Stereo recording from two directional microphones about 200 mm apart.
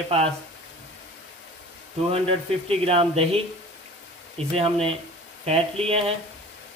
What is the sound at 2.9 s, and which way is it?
Speech, 30° right (ahead or behind).